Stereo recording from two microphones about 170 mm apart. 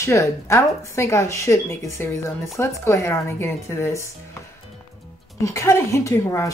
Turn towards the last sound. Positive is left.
turn(degrees=20)  # may be behind; listen again after turning